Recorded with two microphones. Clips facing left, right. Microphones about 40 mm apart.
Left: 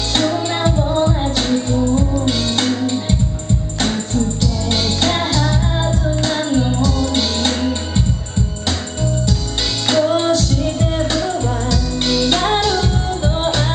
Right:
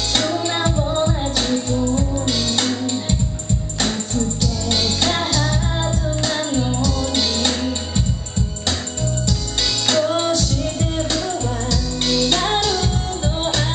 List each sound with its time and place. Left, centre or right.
0.1 s music: centre
9.8 s music: centre